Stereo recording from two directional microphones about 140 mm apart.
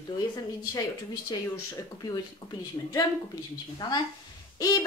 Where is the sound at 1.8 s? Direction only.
30° left (ahead or behind).